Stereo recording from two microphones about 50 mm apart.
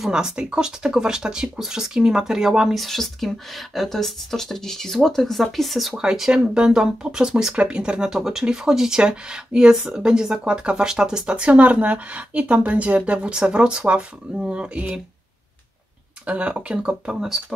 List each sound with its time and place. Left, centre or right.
0.0 s speech: centre
16.3 s speech: right
17.2 s speech: centre